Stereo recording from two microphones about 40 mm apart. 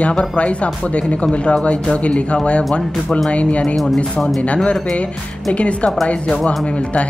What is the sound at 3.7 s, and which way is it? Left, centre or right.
Speech, centre.